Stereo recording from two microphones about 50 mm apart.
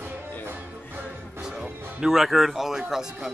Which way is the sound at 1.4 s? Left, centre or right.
Centre.